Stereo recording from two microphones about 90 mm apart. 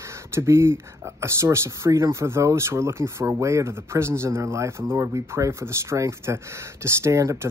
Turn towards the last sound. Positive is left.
turn(degrees=-35)  # may be behind; listen again after turning